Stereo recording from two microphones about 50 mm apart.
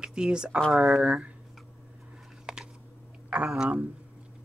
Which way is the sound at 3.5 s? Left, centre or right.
Right.